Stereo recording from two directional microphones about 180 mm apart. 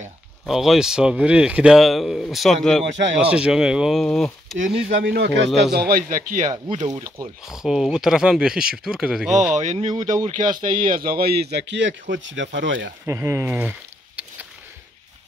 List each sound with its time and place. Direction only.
0.5 s speech: centre (ahead or behind)
5.0 s speech: 70° right (ahead or behind); by 6.5 s 45° right (ahead or behind)
7.4 s speech: centre (ahead or behind)
9.6 s speech: 40° right (ahead or behind); by 12.9 s 90° right
13.0 s speech: 15° right (ahead or behind)